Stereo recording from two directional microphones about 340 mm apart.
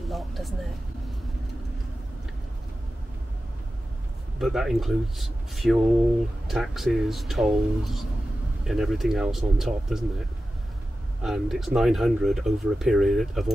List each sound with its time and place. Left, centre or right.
0.1 s speech: centre
4.4 s speech: centre
11.2 s speech: centre